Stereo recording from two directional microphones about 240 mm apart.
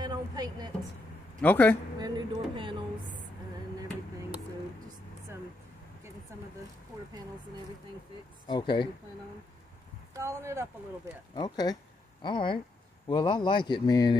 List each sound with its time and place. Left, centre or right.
0.0 s a sound: centre
1.4 s a man's voice: centre
2.0 s a sound: centre
8.5 s speech: centre
10.1 s speech: centre
11.3 s speech: centre